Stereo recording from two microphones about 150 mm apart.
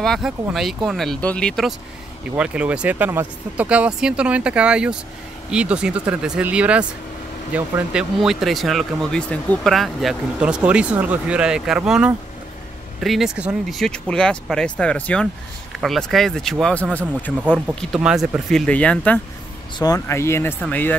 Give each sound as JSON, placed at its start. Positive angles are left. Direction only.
{"t": 0.0, "sound": "speech", "side_deg": 0}
{"t": 2.3, "sound": "speech", "side_deg": -5}
{"t": 18.7, "sound": "speech", "side_deg": 10}
{"t": 19.8, "sound": "speech", "side_deg": 20}